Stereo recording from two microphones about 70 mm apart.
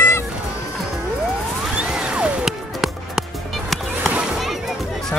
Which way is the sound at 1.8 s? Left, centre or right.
Centre.